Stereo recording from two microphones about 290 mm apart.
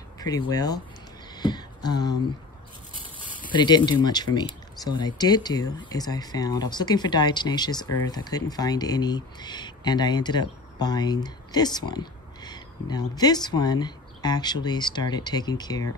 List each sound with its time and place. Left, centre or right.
0.2 s speech: centre
1.3 s a sound: centre
3.5 s speech: centre